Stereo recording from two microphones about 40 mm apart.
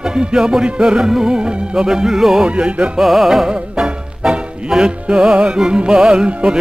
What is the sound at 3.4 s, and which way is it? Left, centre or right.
Music, centre.